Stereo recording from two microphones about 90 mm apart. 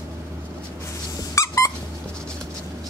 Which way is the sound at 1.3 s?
35° left (ahead or behind).